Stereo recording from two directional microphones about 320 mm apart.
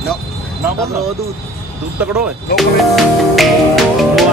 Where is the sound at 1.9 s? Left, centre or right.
Centre.